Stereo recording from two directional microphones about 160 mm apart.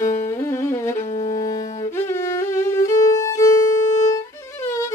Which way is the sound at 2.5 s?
20° left (ahead or behind).